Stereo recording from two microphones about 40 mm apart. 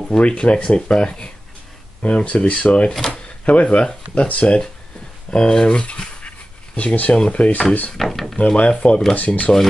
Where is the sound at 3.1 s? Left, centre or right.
Left.